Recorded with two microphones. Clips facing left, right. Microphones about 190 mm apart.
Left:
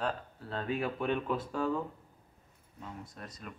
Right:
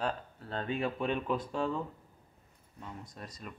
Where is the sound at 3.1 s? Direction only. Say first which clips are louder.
Even; centre (ahead or behind).